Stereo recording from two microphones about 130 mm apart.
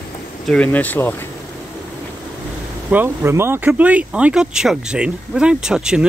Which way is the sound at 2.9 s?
15° right (ahead or behind).